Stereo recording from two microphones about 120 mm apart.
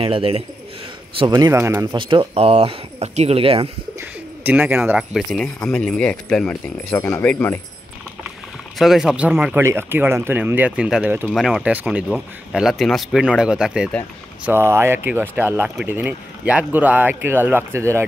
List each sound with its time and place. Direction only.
0.0 s a man's voice: 50° right (ahead or behind)
1.4 s speech: 20° right (ahead or behind)
1.9 s speech: 45° right (ahead or behind)
4.0 s speech: 15° right (ahead or behind)
5.1 s speech: 5° left (ahead or behind)
8.7 s speech: centre (ahead or behind)
9.5 s speech: 20° right (ahead or behind)
11.3 s speech: centre (ahead or behind)
14.4 s speech: 20° right (ahead or behind)